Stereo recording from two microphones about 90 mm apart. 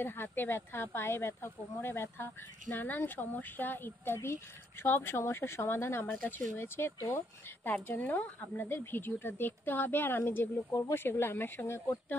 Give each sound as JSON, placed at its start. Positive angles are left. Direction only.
{"t": 0.0, "sound": "speech", "side_deg": 25}